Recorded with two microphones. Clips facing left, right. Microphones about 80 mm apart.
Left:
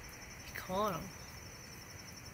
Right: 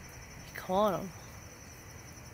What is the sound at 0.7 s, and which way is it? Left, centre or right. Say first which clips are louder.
Speech: right 7 dB; right.